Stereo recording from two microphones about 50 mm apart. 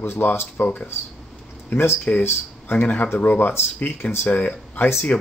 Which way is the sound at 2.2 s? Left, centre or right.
Left.